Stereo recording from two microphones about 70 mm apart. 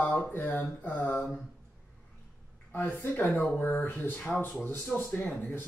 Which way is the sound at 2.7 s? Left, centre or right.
Left.